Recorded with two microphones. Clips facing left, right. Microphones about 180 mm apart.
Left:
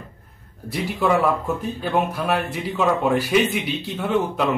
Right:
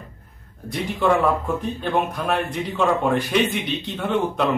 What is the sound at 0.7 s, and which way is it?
A man's voice, 5° left (ahead or behind).